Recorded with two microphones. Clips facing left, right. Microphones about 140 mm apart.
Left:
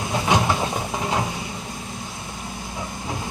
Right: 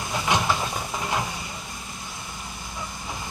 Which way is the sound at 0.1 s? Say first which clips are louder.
Left 3 dB; 25° left (ahead or behind).